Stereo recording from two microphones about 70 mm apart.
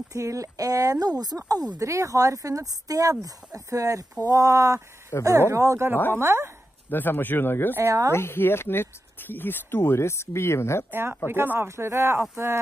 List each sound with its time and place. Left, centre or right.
0.1 s speech: right
1.8 s speech: right
5.1 s speech: left
5.5 s speech: right
6.1 s speech: right
6.9 s speech: left
10.9 s speech: right